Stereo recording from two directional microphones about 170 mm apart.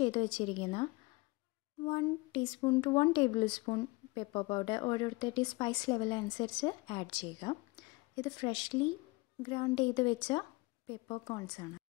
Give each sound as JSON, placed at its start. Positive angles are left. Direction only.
{"t": 0.0, "sound": "a woman's voice", "side_deg": 35}
{"t": 1.9, "sound": "speech", "side_deg": 30}